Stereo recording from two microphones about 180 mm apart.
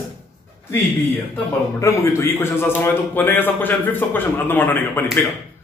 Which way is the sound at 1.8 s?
15° left (ahead or behind).